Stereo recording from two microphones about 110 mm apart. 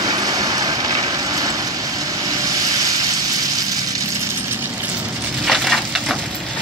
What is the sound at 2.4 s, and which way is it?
Vehicle, 35° right (ahead or behind).